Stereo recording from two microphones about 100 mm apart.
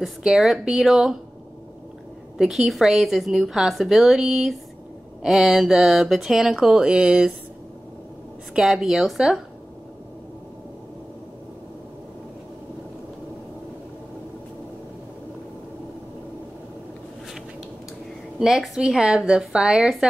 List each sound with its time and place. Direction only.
0.0 s a woman's voice: 5° right (ahead or behind)
2.3 s a woman's voice: 5° right (ahead or behind)
8.5 s a woman's voice: centre (ahead or behind)
18.4 s a woman's voice: 5° right (ahead or behind)